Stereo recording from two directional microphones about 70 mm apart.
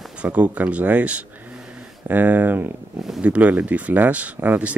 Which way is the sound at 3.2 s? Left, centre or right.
Right.